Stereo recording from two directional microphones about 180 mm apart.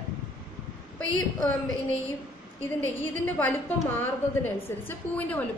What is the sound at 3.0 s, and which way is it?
A woman's voice, 10° left (ahead or behind).